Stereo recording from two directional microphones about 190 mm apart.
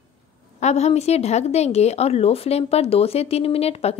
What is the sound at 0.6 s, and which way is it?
Speech, 35° left (ahead or behind).